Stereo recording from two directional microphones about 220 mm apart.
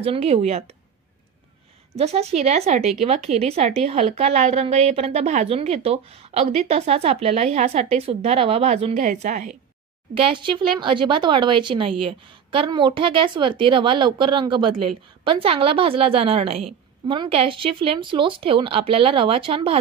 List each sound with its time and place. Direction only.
0.0 s speech: 25° right (ahead or behind)
2.0 s speech: 30° right (ahead or behind)